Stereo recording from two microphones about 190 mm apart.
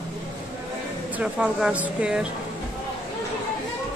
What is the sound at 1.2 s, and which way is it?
Speech, 5° right (ahead or behind).